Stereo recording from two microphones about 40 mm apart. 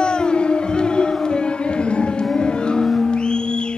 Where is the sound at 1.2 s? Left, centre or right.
Left.